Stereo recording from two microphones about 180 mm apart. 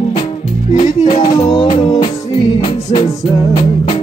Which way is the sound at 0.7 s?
40° left (ahead or behind).